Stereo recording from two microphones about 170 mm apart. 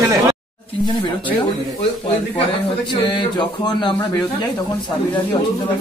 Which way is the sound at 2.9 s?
30° left (ahead or behind).